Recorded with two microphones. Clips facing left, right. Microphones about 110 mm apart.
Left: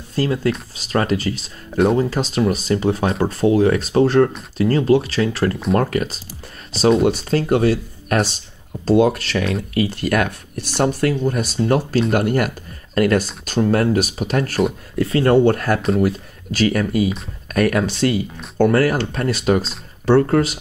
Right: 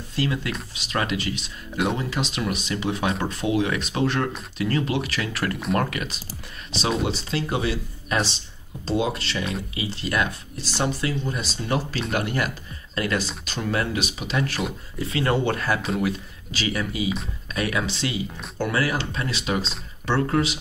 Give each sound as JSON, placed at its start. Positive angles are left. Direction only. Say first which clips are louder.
{"t": 0.1, "sound": "speech", "louder": "left 7 dB", "side_deg": 40}
{"t": 7.1, "sound": "speech", "louder": "left 9 dB", "side_deg": 50}